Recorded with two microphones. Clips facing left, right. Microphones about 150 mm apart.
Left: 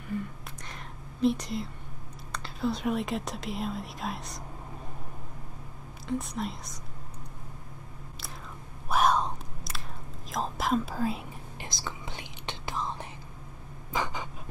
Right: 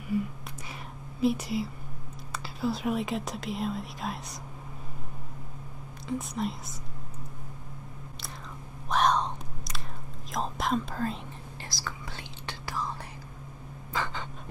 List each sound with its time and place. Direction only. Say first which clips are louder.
0.1 s a sound: right 5 dB; 10° right (ahead or behind)
1.2 s speech: even; 5° right (ahead or behind)
6.0 s speech: right 1 dB; centre (ahead or behind)
8.8 s whispering: even; 5° left (ahead or behind)
10.3 s speech: left 1 dB; centre (ahead or behind)
11.6 s whispering: left 1 dB; 20° left (ahead or behind)
13.9 s a sound: left 1 dB; 15° left (ahead or behind)